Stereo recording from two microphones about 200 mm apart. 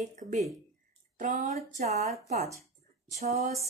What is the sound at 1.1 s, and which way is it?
A woman's voice, 40° right (ahead or behind).